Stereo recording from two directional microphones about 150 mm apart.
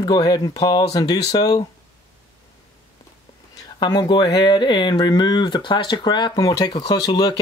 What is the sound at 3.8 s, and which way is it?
Speech, 30° left (ahead or behind).